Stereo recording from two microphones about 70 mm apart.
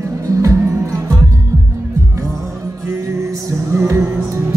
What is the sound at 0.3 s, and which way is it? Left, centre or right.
Music, right.